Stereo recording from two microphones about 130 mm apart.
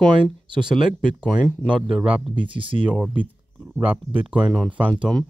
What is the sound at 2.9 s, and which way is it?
Speech, 10° right (ahead or behind).